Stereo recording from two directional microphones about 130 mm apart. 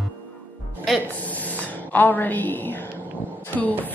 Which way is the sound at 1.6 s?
15° left (ahead or behind).